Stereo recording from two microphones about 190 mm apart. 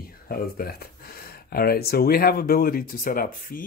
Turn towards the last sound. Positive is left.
turn(degrees=45)  # may be behind; listen again after turning